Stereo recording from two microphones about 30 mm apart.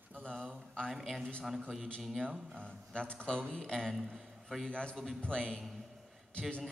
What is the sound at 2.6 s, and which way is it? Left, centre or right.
A man's voice, left.